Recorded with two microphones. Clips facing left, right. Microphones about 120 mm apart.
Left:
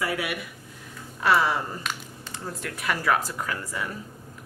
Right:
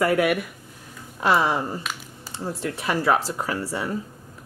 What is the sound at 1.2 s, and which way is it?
Speech, 30° right (ahead or behind).